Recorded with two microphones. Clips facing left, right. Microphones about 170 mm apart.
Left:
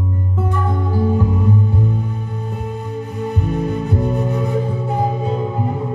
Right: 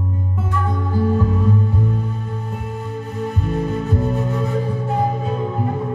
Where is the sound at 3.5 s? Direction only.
15° left (ahead or behind).